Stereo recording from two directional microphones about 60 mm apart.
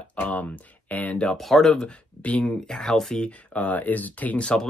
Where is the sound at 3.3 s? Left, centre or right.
Left.